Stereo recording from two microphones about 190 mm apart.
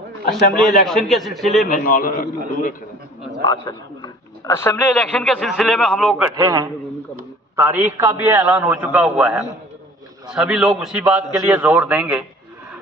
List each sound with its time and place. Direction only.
0.2 s a man's voice: 50° left (ahead or behind)
0.8 s a man's voice: centre (ahead or behind)
1.7 s a man's voice: 45° left (ahead or behind)
3.4 s a man's voice: 20° left (ahead or behind); by 6.2 s centre (ahead or behind)
6.3 s a man's voice: 15° right (ahead or behind)